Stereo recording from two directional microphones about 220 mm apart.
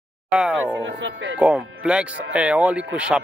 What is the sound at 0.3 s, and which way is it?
Speech, 5° right (ahead or behind).